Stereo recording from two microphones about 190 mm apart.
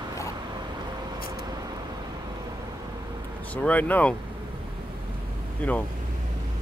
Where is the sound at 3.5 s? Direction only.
10° left (ahead or behind).